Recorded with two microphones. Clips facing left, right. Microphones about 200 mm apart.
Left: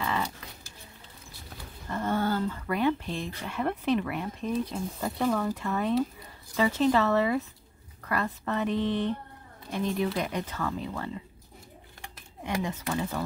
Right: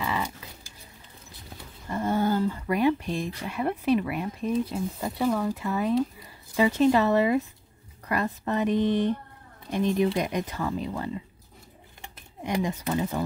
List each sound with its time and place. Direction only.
0.0 s livestock: 5° right (ahead or behind)
1.9 s speech: 10° right (ahead or behind)
12.4 s speech: 20° right (ahead or behind)